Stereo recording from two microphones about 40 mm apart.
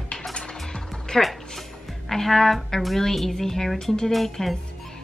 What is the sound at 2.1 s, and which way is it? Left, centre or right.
Music, centre.